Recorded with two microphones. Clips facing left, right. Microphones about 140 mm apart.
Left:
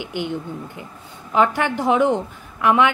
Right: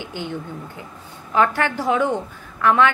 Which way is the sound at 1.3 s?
15° left (ahead or behind).